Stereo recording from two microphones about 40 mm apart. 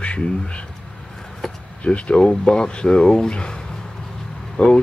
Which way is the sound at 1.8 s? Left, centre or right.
Left.